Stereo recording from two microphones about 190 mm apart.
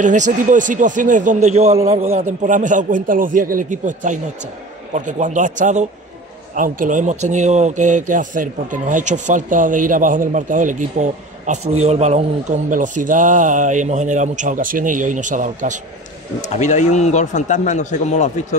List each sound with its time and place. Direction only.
0.0 s a man's voice: 40° right (ahead or behind)
16.3 s a man's voice: 40° left (ahead or behind)